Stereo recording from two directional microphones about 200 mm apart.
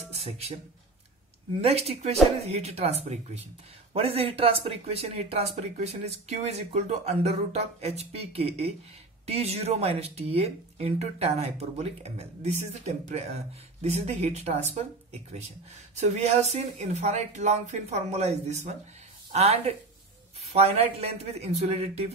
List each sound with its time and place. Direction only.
1.6 s speech: 30° right (ahead or behind)
16.0 s speech: 35° right (ahead or behind)